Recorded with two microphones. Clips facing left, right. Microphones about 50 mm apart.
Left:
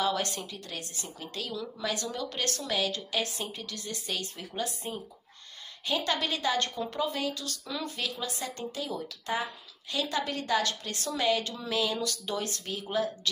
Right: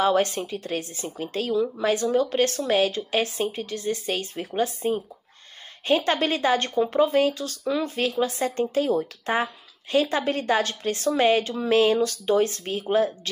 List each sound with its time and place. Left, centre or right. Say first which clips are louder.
0.0 s speech: right 8 dB; right